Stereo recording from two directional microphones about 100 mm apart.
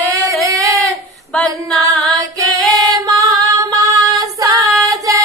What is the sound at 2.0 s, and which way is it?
Female singing, centre (ahead or behind).